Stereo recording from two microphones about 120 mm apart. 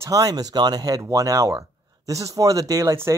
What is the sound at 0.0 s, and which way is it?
Speech, 30° right (ahead or behind).